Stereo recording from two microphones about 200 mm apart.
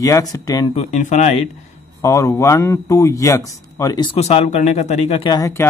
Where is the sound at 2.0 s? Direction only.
15° left (ahead or behind).